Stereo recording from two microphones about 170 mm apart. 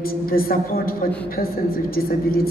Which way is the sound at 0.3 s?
60° left (ahead or behind).